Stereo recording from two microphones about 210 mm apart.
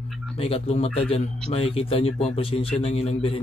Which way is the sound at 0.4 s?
30° left (ahead or behind).